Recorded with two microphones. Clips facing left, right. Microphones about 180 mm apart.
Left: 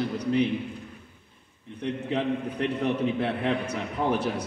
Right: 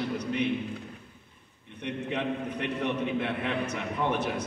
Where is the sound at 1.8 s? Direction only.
35° left (ahead or behind).